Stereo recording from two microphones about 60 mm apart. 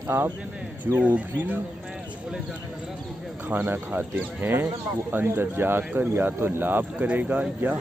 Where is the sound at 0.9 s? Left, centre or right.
Right.